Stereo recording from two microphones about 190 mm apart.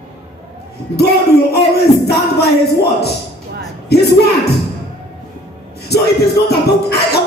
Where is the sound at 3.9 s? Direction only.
60° left (ahead or behind).